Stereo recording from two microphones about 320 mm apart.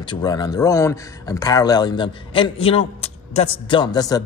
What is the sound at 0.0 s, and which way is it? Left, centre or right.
Speech, centre.